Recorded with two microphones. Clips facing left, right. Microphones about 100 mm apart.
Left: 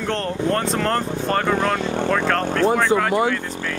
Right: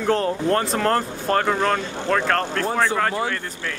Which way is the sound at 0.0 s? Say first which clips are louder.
Right 2 dB; 5° right (ahead or behind).